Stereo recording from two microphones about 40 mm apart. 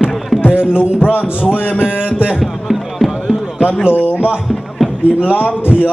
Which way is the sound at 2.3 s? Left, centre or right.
Centre.